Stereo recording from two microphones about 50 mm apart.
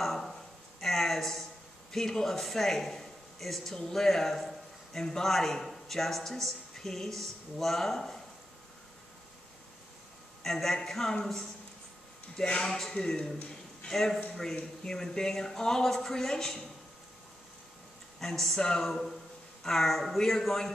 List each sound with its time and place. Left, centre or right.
0.0 s a sound: centre
1.9 s speech: centre
10.4 s speech: centre
12.4 s speech: centre
18.2 s speech: centre